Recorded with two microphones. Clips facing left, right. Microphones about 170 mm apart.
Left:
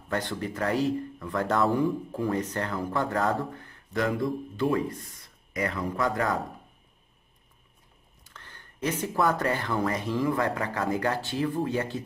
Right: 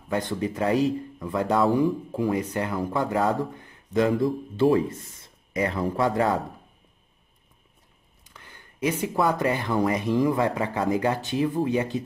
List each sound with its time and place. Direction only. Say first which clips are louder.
0.1 s a man's voice: right 4 dB; 15° right (ahead or behind)
8.2 s speech: right 1 dB; 10° right (ahead or behind)